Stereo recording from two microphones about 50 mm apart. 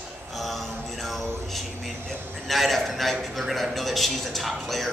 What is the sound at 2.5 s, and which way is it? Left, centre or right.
Speech, centre.